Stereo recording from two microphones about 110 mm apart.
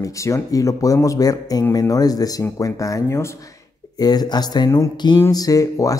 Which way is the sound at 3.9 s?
35° left (ahead or behind).